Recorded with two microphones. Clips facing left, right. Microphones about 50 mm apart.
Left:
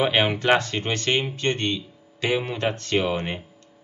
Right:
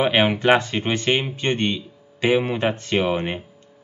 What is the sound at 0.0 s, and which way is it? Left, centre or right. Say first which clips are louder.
Speech: right 3 dB; centre.